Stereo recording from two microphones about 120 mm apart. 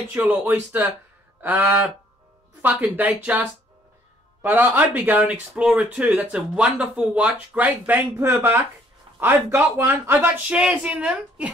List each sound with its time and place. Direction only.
0.1 s speech: 15° right (ahead or behind)
1.4 s a sound: 15° right (ahead or behind)
2.6 s speech: 15° right (ahead or behind)